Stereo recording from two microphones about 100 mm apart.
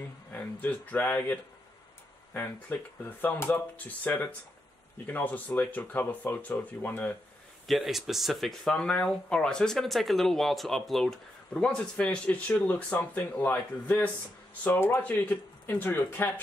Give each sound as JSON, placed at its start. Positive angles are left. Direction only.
{"t": 0.3, "sound": "speech", "side_deg": 15}
{"t": 7.6, "sound": "speech", "side_deg": 0}